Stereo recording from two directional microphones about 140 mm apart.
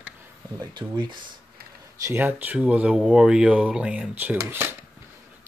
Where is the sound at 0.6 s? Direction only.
35° right (ahead or behind).